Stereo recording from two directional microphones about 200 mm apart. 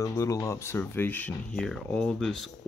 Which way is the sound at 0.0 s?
15° left (ahead or behind).